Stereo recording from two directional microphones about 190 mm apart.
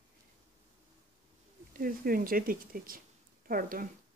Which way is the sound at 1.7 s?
50° right (ahead or behind).